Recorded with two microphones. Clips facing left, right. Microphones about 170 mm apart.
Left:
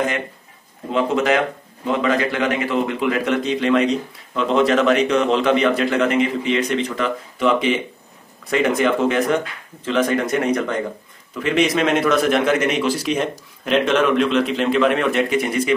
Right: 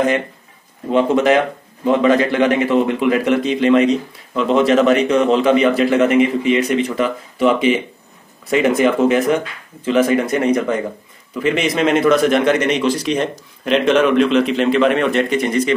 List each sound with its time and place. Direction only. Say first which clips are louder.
0.9 s a man's voice: right 4 dB; 30° right (ahead or behind)
3.0 s a man's voice: right 4 dB; centre (ahead or behind)